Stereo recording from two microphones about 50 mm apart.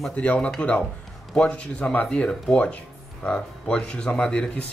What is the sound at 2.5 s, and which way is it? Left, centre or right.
Speech, centre.